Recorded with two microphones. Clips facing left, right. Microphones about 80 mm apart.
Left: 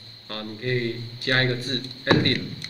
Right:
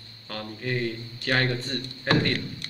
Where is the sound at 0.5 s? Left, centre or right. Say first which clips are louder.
Left 3 dB; centre.